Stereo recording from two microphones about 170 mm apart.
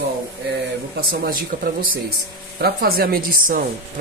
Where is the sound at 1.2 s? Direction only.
60° right (ahead or behind).